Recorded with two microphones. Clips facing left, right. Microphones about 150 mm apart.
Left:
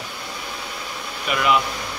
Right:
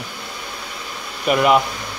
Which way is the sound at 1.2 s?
45° right (ahead or behind).